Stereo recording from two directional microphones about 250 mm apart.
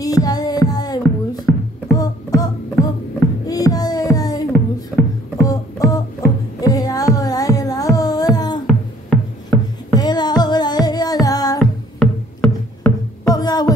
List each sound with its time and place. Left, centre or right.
0.0 s music: centre
9.9 s music: centre
11.6 s music: centre